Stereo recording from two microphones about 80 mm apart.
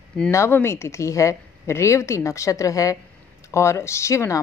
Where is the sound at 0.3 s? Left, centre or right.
Left.